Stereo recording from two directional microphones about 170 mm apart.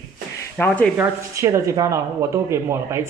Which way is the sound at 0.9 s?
15° right (ahead or behind).